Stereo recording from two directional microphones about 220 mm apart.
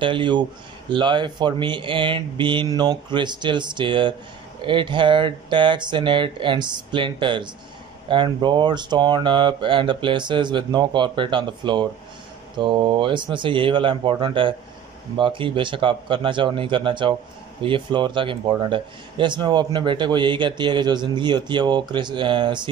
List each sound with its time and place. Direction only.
0.0 s speech: 20° right (ahead or behind)